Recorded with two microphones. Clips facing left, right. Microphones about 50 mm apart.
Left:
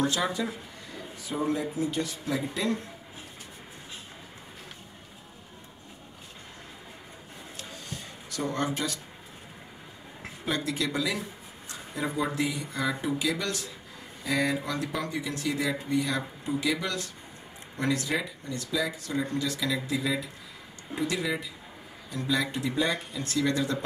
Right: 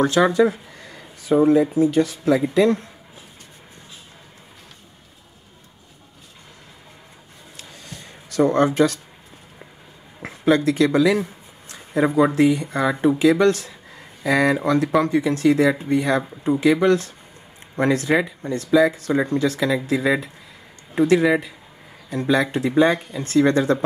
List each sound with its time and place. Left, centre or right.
0.2 s speech: right
8.3 s speech: right
10.2 s speech: right
14.2 s speech: right